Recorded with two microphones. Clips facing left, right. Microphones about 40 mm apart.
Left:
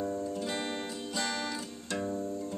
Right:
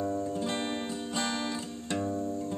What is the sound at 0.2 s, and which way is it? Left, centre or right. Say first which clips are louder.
Music: right 2 dB; right.